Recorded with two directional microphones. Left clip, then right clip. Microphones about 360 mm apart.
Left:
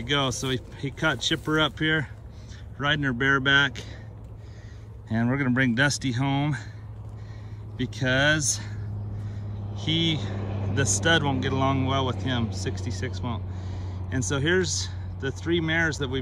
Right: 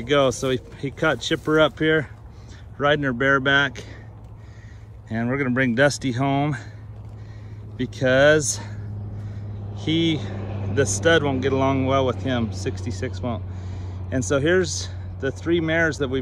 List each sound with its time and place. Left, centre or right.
0.0 s speech: centre
5.0 s speech: centre
7.7 s speech: centre
9.3 s vehicle: centre
10.3 s vehicle: left
10.7 s speech: centre